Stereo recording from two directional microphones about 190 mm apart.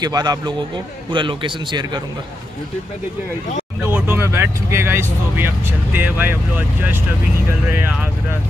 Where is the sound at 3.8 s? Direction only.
10° right (ahead or behind).